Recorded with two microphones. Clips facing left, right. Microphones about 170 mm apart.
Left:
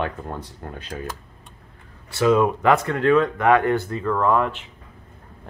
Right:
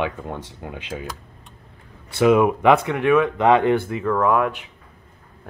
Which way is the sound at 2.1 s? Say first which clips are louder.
Right 2 dB; 15° right (ahead or behind).